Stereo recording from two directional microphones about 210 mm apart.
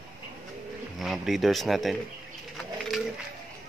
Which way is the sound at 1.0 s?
Centre (ahead or behind).